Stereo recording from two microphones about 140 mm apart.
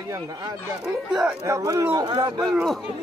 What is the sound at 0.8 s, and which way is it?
Speech, centre (ahead or behind).